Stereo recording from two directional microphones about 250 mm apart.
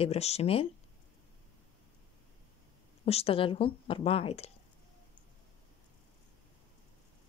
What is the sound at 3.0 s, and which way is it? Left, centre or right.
Speech, left.